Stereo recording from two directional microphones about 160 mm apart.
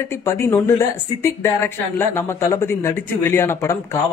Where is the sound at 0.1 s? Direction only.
15° left (ahead or behind).